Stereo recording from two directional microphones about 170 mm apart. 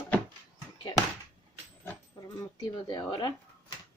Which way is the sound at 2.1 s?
25° left (ahead or behind).